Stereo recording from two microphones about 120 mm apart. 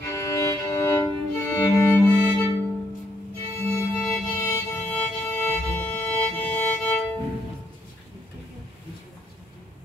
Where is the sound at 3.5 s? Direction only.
20° left (ahead or behind).